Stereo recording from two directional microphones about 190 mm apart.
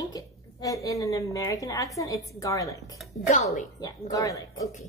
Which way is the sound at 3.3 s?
40° left (ahead or behind).